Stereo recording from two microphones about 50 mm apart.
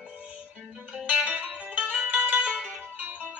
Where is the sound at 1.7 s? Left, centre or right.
Right.